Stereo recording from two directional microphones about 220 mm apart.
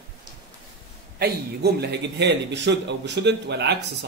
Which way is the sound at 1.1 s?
45° right (ahead or behind).